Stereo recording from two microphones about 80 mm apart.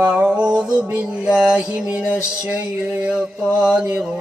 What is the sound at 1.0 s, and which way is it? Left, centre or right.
Mantra, centre.